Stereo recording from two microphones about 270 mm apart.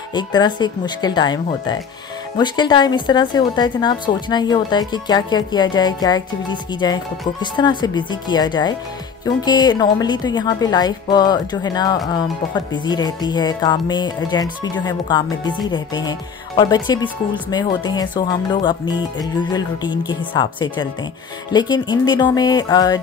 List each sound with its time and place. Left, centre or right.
0.1 s speech: centre